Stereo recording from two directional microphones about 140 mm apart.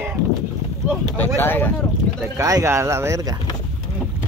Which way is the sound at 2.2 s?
25° right (ahead or behind).